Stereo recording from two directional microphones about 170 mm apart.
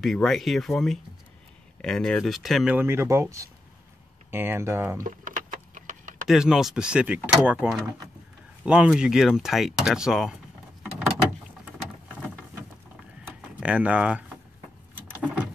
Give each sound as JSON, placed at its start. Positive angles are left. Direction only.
{"t": 0.0, "sound": "speech", "side_deg": 0}
{"t": 5.0, "sound": "vehicle", "side_deg": -50}
{"t": 6.2, "sound": "speech", "side_deg": -5}
{"t": 13.6, "sound": "speech", "side_deg": -5}